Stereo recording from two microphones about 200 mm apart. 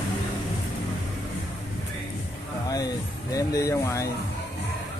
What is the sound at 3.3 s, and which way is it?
Speech, 15° left (ahead or behind).